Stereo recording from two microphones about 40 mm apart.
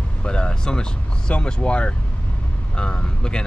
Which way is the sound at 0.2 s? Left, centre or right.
Left.